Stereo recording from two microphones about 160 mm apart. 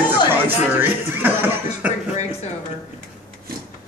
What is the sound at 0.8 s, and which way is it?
Speech, 10° right (ahead or behind).